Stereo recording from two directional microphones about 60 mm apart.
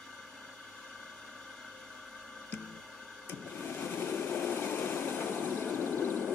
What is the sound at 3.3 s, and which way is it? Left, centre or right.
Vehicle, left.